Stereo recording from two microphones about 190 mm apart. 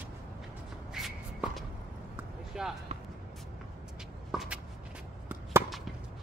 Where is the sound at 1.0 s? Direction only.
Centre (ahead or behind).